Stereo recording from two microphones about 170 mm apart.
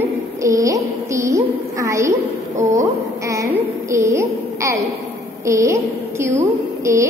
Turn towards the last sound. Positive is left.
turn(degrees=-15)  # may be behind; listen again after turning